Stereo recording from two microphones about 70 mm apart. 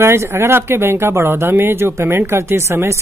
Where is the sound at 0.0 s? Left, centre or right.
Right.